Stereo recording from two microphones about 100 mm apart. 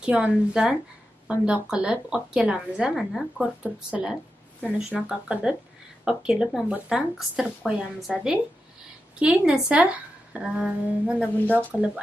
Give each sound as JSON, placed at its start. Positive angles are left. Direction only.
{"t": 0.0, "sound": "a woman's voice", "side_deg": -10}
{"t": 11.4, "sound": "speech", "side_deg": 15}